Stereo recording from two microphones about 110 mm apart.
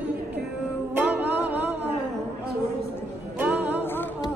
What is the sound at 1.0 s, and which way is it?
Music, 15° right (ahead or behind).